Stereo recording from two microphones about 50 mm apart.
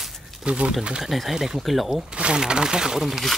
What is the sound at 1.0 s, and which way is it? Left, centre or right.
Speech, centre.